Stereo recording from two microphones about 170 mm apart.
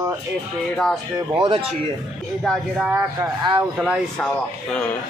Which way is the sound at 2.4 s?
Centre (ahead or behind).